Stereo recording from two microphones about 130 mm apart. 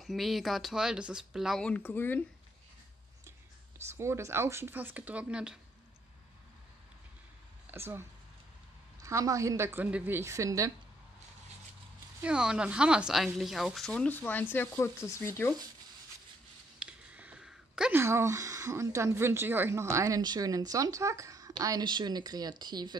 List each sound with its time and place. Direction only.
0.0 s speech: centre (ahead or behind)
1.6 s speech: 10° left (ahead or behind)
3.3 s speech: 20° right (ahead or behind)
7.7 s speech: 20° right (ahead or behind)
9.0 s a woman's voice: 25° right (ahead or behind)
12.2 s speech: 5° right (ahead or behind); by 15.5 s 15° left (ahead or behind)
16.8 s a sound: 10° right (ahead or behind)
17.9 s a woman's voice: 20° right (ahead or behind)